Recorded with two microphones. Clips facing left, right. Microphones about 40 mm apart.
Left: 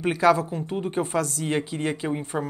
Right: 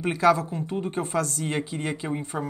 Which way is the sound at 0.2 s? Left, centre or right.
Left.